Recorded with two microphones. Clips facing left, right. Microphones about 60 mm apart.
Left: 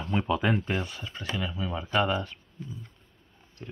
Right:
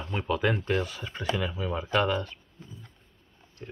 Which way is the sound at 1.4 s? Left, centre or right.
Centre.